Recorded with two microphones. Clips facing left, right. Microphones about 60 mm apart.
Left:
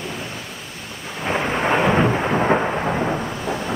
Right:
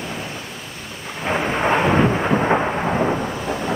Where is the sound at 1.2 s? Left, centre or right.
Centre.